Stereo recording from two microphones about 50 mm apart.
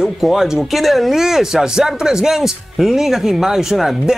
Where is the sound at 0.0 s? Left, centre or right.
Centre.